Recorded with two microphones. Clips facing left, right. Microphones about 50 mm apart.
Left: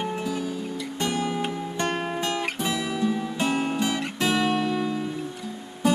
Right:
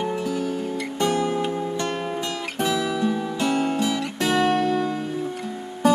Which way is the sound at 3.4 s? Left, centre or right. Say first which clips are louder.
Right 3 dB; left.